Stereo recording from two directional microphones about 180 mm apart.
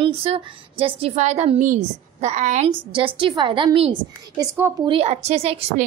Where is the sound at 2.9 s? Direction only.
30° right (ahead or behind).